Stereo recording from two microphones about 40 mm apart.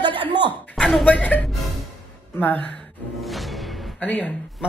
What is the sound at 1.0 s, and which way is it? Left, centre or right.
Speech, left.